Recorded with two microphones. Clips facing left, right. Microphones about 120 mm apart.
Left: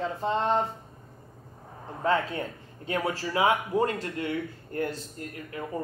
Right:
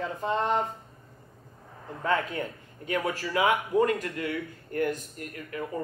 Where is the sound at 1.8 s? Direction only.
30° left (ahead or behind).